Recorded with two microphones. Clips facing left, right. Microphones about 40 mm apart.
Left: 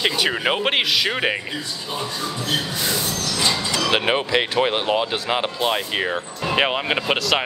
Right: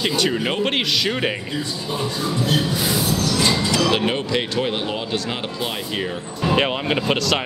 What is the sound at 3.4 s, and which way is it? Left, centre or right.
Music, centre.